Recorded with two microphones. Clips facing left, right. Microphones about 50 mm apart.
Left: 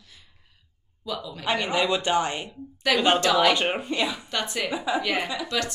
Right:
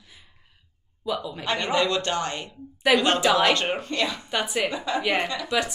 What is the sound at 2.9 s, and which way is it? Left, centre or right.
Speech, centre.